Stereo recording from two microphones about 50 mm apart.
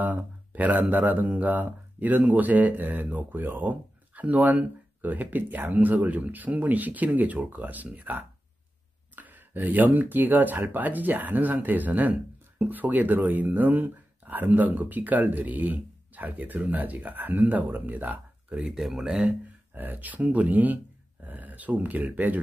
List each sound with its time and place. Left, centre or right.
0.0 s speech: right
18.9 s speech: centre
19.7 s speech: right